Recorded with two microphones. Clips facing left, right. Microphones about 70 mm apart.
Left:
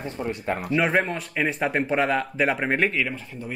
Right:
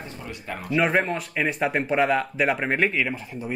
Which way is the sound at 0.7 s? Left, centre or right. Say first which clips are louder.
Right 2 dB; centre.